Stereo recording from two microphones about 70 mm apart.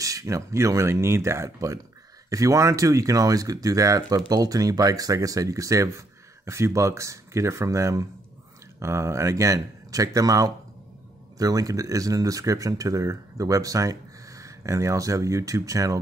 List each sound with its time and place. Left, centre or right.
0.0 s speech: right